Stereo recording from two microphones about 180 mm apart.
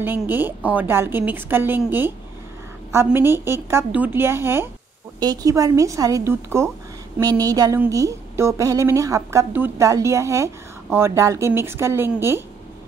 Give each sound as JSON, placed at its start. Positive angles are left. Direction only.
{"t": 0.0, "sound": "a woman's voice", "side_deg": -10}